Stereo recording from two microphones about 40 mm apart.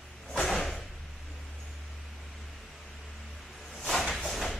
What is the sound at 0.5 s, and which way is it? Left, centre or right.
Door, centre.